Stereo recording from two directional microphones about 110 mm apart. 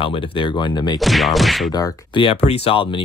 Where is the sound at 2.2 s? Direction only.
70° left (ahead or behind).